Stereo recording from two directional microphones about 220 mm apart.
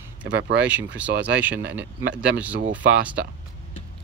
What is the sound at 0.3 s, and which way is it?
Speech, 55° right (ahead or behind).